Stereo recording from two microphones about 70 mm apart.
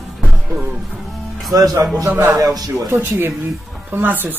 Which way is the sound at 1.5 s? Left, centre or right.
Right.